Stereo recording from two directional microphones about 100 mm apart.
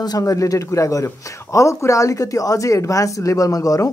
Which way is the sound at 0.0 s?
40° left (ahead or behind).